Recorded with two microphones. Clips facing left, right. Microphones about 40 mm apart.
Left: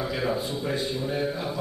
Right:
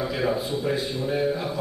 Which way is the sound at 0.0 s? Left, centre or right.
Centre.